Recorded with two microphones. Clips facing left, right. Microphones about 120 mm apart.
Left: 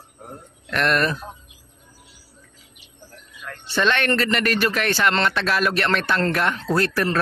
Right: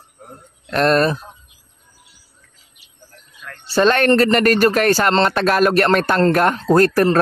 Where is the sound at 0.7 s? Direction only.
35° right (ahead or behind).